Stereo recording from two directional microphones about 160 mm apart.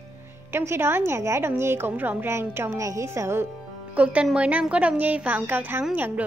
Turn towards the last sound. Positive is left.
turn(degrees=-10)  # may be behind; listen again after turning